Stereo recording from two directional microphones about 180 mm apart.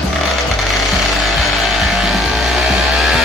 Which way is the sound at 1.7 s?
Centre (ahead or behind).